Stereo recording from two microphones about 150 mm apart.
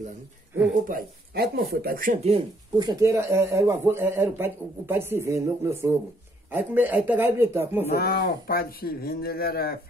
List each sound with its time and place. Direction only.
0.8 s speech: 80° right
2.8 s speech: 25° right (ahead or behind)
7.9 s speech: 90° left